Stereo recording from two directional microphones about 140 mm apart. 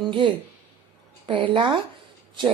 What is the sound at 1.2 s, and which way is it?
Speech, 35° right (ahead or behind).